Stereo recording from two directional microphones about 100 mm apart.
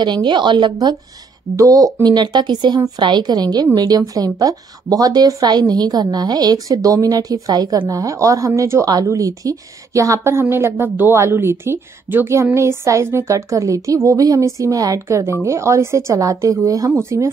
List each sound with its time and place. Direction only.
0.0 s a woman's voice: 50° right (ahead or behind)
1.6 s a woman's voice: 35° right (ahead or behind)